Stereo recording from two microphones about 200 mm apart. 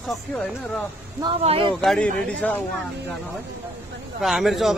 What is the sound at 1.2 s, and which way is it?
Speech, 25° right (ahead or behind).